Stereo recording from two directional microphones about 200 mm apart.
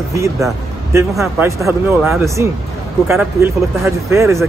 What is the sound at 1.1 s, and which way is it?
Speech, 5° right (ahead or behind).